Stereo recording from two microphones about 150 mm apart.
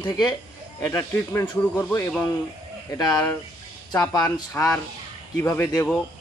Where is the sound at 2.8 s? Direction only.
25° left (ahead or behind).